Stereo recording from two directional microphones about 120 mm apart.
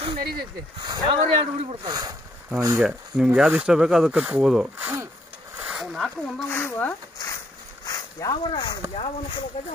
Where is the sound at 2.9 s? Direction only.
15° right (ahead or behind).